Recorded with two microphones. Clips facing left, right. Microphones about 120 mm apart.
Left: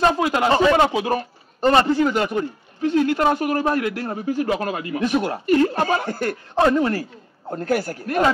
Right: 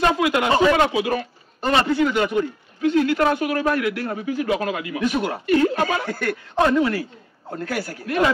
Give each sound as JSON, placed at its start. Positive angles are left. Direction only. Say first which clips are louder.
{"t": 0.2, "sound": "a man's voice", "louder": "even", "side_deg": 35}
{"t": 4.3, "sound": "a man's voice", "louder": "left 1 dB", "side_deg": 45}